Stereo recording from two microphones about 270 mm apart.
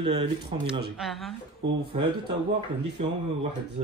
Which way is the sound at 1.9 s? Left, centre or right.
Right.